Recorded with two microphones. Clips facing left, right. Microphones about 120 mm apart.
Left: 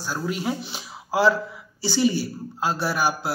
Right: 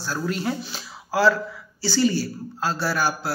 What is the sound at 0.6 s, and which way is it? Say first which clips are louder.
A man's voice: left 1 dB; 20° left (ahead or behind).